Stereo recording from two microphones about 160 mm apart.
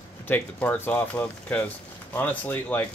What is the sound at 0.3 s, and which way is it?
Speech, 10° left (ahead or behind).